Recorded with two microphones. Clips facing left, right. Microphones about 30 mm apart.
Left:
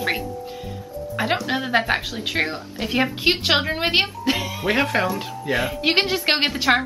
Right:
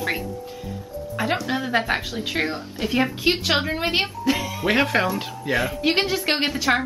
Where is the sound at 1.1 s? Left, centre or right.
Left.